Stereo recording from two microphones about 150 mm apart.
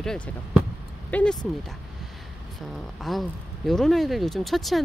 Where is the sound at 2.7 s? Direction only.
Centre (ahead or behind).